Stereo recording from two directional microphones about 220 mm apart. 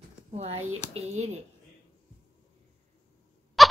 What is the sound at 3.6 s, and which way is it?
Rodents, centre (ahead or behind).